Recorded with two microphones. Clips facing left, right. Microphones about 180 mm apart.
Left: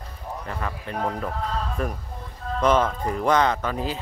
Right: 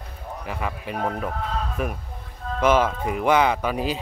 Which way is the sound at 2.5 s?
5° right (ahead or behind).